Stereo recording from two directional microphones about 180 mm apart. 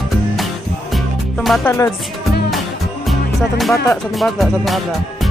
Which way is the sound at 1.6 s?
15° left (ahead or behind).